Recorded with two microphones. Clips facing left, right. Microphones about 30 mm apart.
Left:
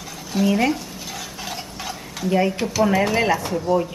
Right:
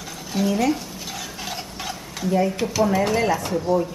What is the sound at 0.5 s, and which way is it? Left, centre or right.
Speech, left.